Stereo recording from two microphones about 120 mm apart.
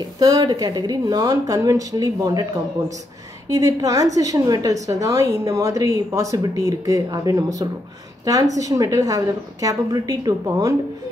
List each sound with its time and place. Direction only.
0.0 s speech: 30° right (ahead or behind)
3.4 s a woman's voice: 30° right (ahead or behind)